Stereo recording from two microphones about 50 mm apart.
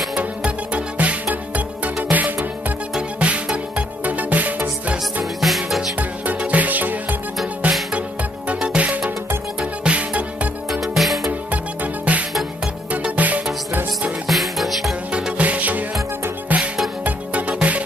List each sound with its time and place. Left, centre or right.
0.7 s music: right
3.2 s music: right
5.2 s music: centre
5.9 s music: right
10.7 s music: centre
11.5 s music: right
14.2 s music: centre
15.1 s music: right
17.0 s music: right